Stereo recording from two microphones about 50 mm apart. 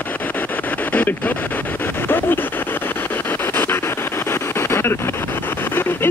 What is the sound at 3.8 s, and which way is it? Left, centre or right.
Vehicle, left.